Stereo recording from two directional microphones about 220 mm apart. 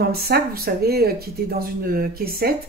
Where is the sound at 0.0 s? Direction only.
45° right (ahead or behind).